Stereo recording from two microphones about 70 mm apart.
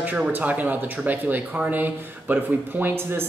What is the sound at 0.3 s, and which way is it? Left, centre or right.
Speech, right.